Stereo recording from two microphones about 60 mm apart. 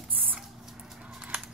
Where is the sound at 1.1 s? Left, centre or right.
Right.